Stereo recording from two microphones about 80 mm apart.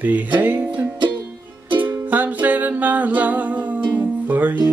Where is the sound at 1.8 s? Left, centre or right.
Right.